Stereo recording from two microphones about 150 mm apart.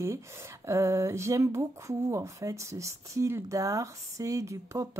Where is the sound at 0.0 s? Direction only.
20° right (ahead or behind).